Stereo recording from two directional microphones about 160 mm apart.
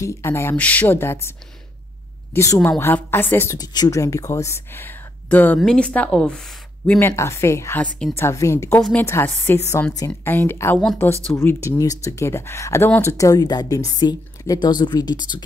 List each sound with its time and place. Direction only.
0.0 s speech: 15° left (ahead or behind)
2.3 s speech: 15° left (ahead or behind)
3.5 s a woman's voice: 25° left (ahead or behind); by 7.0 s 5° left (ahead or behind)
7.0 s speech: 15° left (ahead or behind)